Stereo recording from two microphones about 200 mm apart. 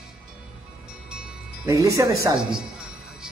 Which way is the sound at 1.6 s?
15° right (ahead or behind).